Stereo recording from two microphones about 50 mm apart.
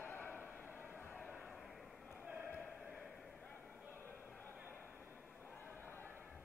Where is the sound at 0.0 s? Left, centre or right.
Left.